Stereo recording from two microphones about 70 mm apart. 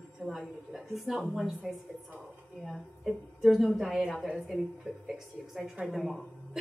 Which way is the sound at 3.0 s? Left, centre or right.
Centre.